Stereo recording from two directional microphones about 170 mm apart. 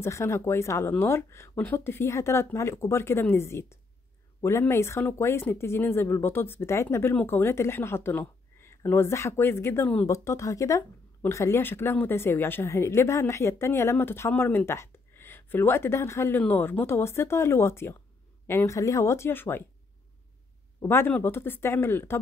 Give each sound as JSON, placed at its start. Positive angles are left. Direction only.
{"t": 0.0, "sound": "speech", "side_deg": 15}
{"t": 20.8, "sound": "speech", "side_deg": 15}